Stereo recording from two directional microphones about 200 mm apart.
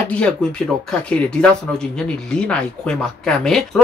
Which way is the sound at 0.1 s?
5° left (ahead or behind).